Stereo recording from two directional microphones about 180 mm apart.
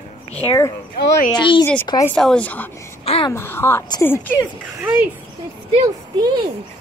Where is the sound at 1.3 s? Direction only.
25° left (ahead or behind).